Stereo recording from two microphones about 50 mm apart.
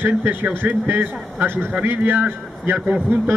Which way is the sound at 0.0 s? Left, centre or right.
Right.